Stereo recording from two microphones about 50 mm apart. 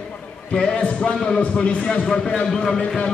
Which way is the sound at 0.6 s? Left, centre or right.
Centre.